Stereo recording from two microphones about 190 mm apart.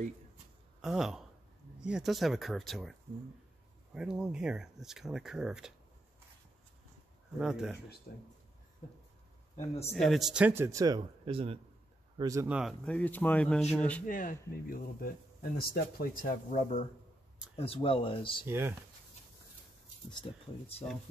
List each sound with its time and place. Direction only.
0.7 s speech: centre (ahead or behind)
7.3 s speech: 5° right (ahead or behind)
9.9 s speech: centre (ahead or behind); by 11.6 s 30° right (ahead or behind)
12.2 s speech: 15° right (ahead or behind)
12.5 s a man's voice: centre (ahead or behind)
14.0 s speech: 45° left (ahead or behind); by 18.5 s 25° left (ahead or behind)
18.5 s speech: 15° right (ahead or behind)